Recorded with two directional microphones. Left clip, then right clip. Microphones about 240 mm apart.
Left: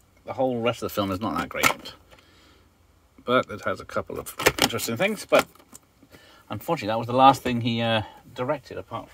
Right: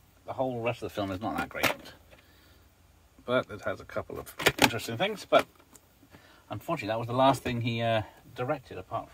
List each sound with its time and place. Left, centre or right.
0.3 s speech: left
3.3 s speech: left
6.5 s speech: left